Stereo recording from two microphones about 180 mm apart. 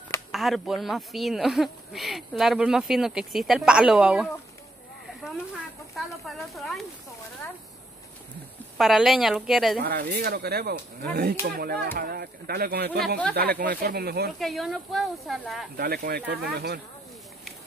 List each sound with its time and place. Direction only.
0.3 s speech: centre (ahead or behind)
8.7 s speech: centre (ahead or behind)
9.8 s speech: 60° right (ahead or behind)
14.4 s speech: centre (ahead or behind)
15.7 s speech: 60° right (ahead or behind)